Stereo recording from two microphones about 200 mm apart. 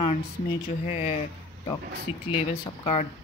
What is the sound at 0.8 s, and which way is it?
Speech, 35° left (ahead or behind).